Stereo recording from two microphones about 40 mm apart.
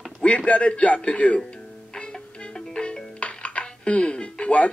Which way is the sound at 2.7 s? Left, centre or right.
Left.